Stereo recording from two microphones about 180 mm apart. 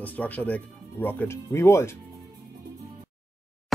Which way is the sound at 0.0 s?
10° left (ahead or behind).